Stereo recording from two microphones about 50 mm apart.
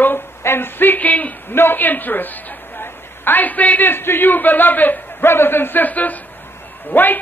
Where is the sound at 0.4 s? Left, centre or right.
Left.